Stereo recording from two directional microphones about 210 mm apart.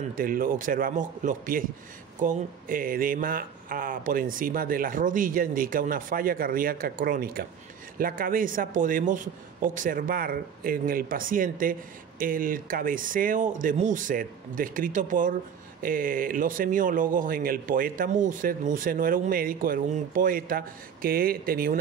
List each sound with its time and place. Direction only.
0.2 s speech: 40° right (ahead or behind)